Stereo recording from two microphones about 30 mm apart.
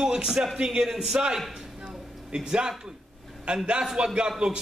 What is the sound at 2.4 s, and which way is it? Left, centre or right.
Speech, right.